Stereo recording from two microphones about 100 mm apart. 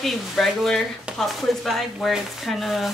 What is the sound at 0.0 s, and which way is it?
Speech, centre (ahead or behind).